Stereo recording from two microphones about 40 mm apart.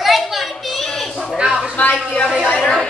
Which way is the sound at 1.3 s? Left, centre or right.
Right.